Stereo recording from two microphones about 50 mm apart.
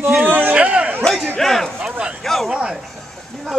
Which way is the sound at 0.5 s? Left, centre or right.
Right.